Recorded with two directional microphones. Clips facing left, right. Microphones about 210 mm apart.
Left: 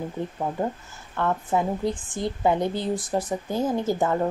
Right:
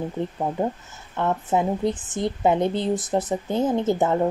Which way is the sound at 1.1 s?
20° right (ahead or behind).